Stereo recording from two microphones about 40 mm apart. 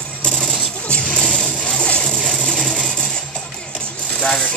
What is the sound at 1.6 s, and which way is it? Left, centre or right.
Music, left.